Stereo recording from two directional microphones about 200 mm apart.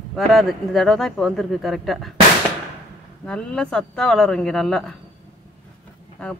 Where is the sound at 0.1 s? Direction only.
Centre (ahead or behind).